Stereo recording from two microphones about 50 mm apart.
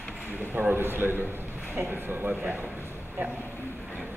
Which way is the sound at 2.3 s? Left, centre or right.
Right.